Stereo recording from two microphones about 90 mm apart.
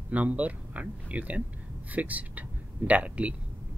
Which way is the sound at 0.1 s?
15° right (ahead or behind).